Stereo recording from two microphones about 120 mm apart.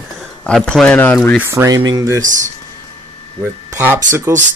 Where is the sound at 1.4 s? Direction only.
25° right (ahead or behind).